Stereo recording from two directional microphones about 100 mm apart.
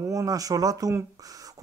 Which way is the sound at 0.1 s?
35° right (ahead or behind).